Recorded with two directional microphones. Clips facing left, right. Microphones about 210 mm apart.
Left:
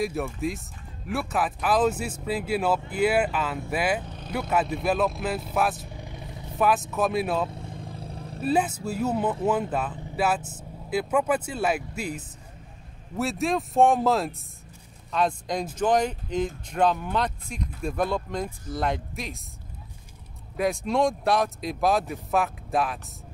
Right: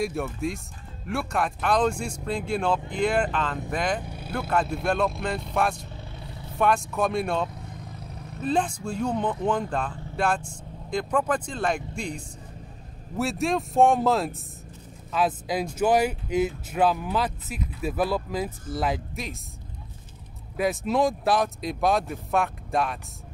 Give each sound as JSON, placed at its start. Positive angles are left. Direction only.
{"t": 0.0, "sound": "speech", "side_deg": 0}
{"t": 4.0, "sound": "vehicle", "side_deg": -10}
{"t": 4.3, "sound": "speech", "side_deg": 10}
{"t": 5.9, "sound": "vehicle", "side_deg": 15}
{"t": 6.6, "sound": "speech", "side_deg": 5}
{"t": 7.4, "sound": "vehicle", "side_deg": 30}
{"t": 8.4, "sound": "speech", "side_deg": 10}
{"t": 20.5, "sound": "speech", "side_deg": 0}